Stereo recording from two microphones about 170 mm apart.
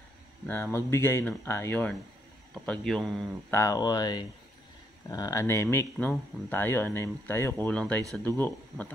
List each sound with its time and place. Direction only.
0.5 s speech: 15° left (ahead or behind)
3.5 s speech: 20° left (ahead or behind)